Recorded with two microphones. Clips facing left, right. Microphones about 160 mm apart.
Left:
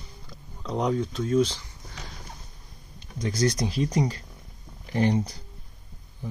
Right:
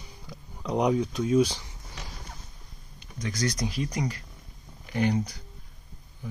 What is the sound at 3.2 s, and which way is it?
Speech, 30° left (ahead or behind).